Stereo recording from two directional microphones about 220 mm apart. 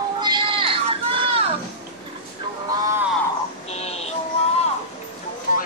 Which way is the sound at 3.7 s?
30° left (ahead or behind).